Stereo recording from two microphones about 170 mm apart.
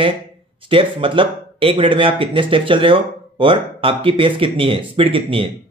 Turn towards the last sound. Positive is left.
turn(degrees=-30)  # may be behind; listen again after turning